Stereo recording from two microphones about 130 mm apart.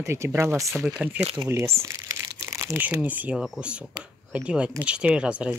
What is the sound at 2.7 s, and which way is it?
Speech, 10° right (ahead or behind).